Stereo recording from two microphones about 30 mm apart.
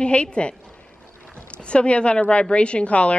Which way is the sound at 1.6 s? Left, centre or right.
Left.